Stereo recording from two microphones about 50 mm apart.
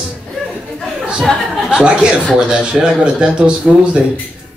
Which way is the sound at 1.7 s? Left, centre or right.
Right.